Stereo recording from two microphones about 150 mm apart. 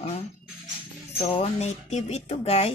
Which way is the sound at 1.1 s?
45° left (ahead or behind).